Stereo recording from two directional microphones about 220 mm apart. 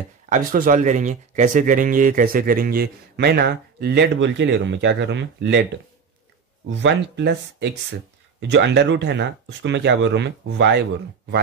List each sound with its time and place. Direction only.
0.3 s speech: 35° right (ahead or behind); by 5.6 s 55° right (ahead or behind)
6.7 s speech: 55° right (ahead or behind)